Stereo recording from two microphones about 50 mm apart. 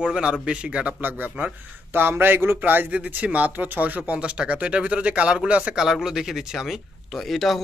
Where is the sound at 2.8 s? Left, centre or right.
Right.